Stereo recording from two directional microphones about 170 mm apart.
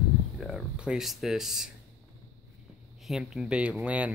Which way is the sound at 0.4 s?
Centre (ahead or behind).